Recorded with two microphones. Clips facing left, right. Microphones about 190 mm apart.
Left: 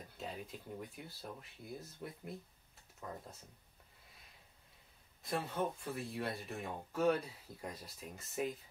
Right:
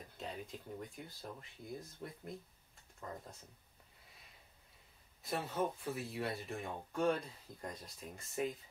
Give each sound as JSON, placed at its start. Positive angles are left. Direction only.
{"t": 0.2, "sound": "speech", "side_deg": 5}
{"t": 5.2, "sound": "speech", "side_deg": 0}